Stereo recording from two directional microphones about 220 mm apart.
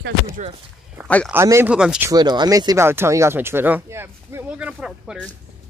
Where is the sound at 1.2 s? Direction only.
10° right (ahead or behind).